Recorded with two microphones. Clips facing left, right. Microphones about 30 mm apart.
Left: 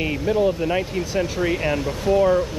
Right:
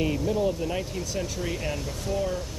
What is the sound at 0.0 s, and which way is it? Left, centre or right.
Speech, left.